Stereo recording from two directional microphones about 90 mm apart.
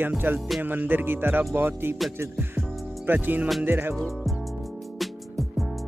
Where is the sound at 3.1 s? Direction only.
20° right (ahead or behind).